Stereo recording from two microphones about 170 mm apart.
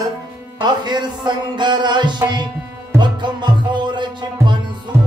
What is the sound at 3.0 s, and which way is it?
Music, 25° right (ahead or behind).